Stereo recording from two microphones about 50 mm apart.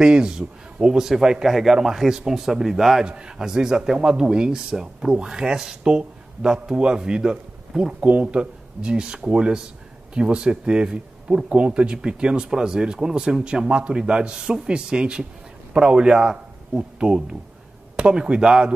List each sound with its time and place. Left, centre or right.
0.0 s speech: centre
8.0 s speech: right